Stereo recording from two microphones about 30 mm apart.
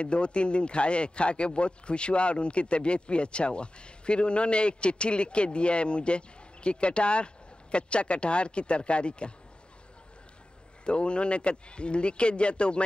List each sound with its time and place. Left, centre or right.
0.0 s a man's voice: left
10.9 s a man's voice: left